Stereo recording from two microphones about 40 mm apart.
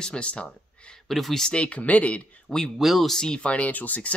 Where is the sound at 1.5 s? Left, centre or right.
Left.